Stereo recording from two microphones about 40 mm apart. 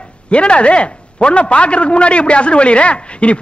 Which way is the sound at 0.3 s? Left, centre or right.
Left.